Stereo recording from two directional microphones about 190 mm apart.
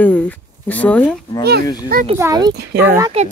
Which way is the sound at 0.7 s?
10° left (ahead or behind).